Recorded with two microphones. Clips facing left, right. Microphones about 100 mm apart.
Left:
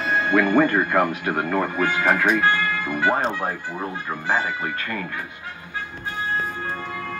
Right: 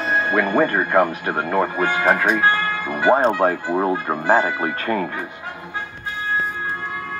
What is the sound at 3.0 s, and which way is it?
Speech, 20° right (ahead or behind).